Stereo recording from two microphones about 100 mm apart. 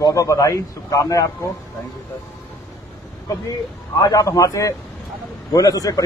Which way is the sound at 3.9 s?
35° left (ahead or behind).